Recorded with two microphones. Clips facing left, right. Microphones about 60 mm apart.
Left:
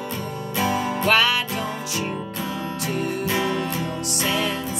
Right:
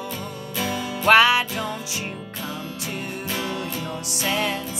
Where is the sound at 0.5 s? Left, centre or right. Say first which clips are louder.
Left 4 dB; left.